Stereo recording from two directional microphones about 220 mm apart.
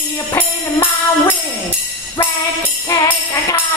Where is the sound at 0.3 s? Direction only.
10° left (ahead or behind).